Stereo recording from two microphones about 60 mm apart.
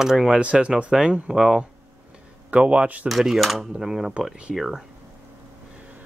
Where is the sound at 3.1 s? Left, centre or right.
Centre.